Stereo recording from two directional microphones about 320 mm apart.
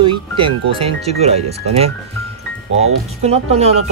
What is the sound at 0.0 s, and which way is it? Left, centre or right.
Speech, centre.